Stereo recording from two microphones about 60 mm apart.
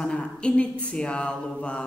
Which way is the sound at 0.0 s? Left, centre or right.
Centre.